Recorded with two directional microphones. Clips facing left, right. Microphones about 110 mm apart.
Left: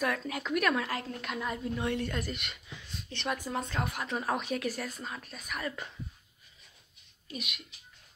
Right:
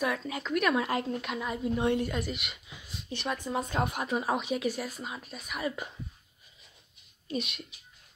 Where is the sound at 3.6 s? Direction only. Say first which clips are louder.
Right 4 dB; 20° right (ahead or behind).